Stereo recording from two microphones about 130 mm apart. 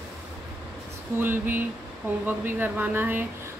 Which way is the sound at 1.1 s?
15° right (ahead or behind).